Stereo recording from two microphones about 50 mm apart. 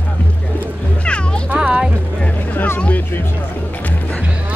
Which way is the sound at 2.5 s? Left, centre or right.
Left.